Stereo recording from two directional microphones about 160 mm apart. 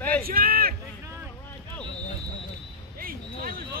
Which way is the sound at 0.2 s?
65° right (ahead or behind).